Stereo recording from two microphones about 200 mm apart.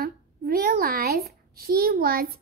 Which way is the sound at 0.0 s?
50° right (ahead or behind).